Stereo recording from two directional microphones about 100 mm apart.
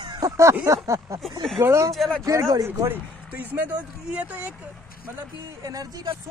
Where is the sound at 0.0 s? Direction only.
45° right (ahead or behind).